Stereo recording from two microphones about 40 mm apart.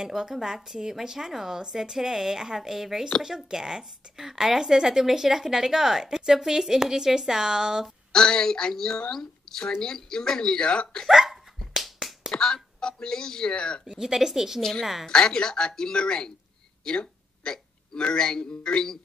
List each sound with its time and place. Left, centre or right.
0.0 s a woman's voice: centre
8.1 s a woman's voice: centre
11.1 s a sound: centre
12.3 s a sound: centre
12.8 s speech: centre
13.8 s a woman's voice: centre
14.6 s a woman's voice: centre
15.0 s speech: centre